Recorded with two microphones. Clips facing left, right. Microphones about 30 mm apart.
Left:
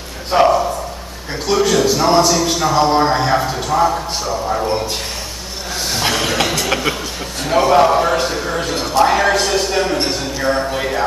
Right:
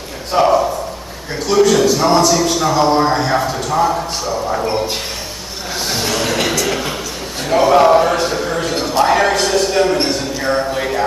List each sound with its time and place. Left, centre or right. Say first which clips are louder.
0.3 s a man's voice: left 1 dB; left
1.5 s a man's voice: right 3 dB; centre
6.1 s a sound: right 2 dB; centre
7.4 s a man's voice: right 1 dB; centre